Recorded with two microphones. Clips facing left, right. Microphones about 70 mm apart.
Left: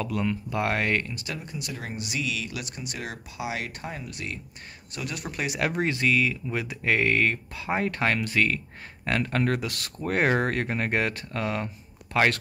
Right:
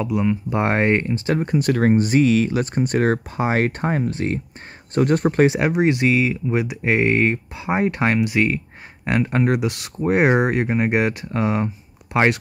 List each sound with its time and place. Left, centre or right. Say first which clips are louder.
0.0 s speech: right 7 dB; centre
1.4 s speech: right 18 dB; right
4.1 s speech: right 12 dB; right
5.6 s speech: right 8 dB; right